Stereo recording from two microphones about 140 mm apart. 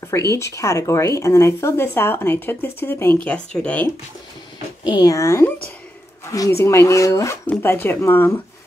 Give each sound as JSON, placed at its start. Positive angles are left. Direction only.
{"t": 0.3, "sound": "speech", "side_deg": 20}
{"t": 4.8, "sound": "speech", "side_deg": 30}